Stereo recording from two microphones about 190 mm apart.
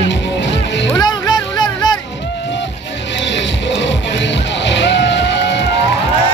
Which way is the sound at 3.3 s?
70° left (ahead or behind).